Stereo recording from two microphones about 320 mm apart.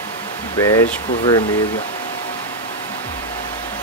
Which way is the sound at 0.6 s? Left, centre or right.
Centre.